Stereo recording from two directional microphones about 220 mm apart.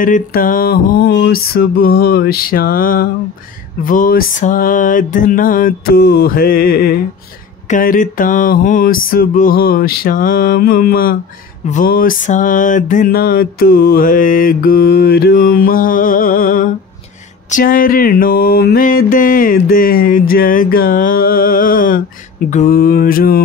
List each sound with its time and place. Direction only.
0.0 s music: 40° left (ahead or behind)